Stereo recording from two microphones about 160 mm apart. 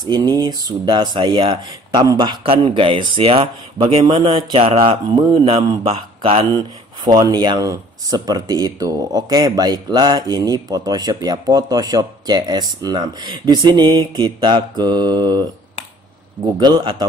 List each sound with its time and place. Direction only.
0.0 s speech: 25° right (ahead or behind)
16.5 s speech: 25° right (ahead or behind)